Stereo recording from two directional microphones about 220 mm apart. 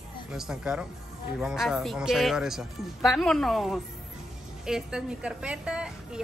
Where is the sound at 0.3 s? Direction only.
5° right (ahead or behind).